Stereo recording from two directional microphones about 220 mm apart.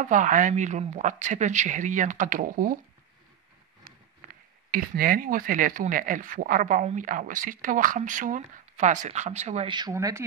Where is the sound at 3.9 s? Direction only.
40° right (ahead or behind).